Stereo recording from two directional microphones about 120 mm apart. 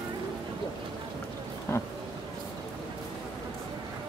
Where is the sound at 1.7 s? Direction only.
20° left (ahead or behind).